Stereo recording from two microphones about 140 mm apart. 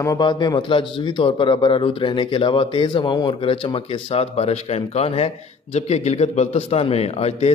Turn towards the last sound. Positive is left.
turn(degrees=45)  # may be behind; listen again after turning